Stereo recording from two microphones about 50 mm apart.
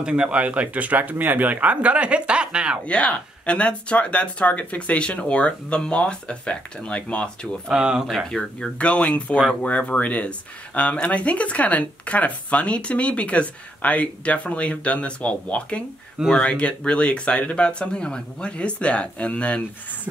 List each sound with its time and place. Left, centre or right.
0.0 s speech: right
2.9 s speech: left
7.7 s speech: centre
8.1 s speech: centre
8.4 s speech: centre
16.3 s speech: centre
16.5 s speech: left